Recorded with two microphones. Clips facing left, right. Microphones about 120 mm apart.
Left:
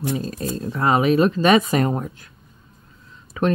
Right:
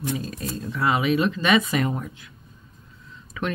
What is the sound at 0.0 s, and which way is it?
Speech, 35° left (ahead or behind).